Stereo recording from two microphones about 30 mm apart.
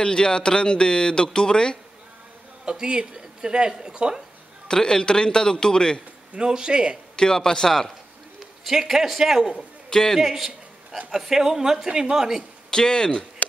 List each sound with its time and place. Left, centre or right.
0.0 s speech: left
2.6 s a man's voice: right
4.6 s speech: left
6.3 s speech: right
7.2 s speech: left
8.6 s a man's voice: centre
9.8 s a man's voice: left
10.2 s a sound: centre
11.1 s speech: centre
12.7 s speech: left